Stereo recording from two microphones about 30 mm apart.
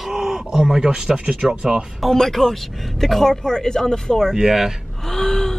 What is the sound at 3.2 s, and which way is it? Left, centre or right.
Speech, centre.